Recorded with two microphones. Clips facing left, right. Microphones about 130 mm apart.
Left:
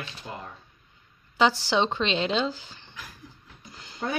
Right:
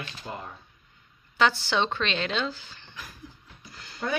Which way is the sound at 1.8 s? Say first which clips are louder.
Left 4 dB; 25° left (ahead or behind).